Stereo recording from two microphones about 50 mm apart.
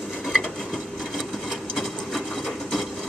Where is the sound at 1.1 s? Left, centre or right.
Centre.